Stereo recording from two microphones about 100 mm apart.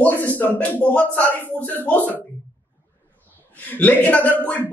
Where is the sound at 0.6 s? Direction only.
15° left (ahead or behind).